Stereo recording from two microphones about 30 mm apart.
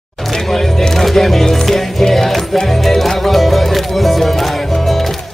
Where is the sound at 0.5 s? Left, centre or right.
Centre.